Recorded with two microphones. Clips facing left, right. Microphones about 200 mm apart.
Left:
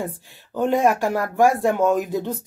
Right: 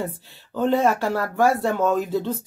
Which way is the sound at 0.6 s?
15° left (ahead or behind).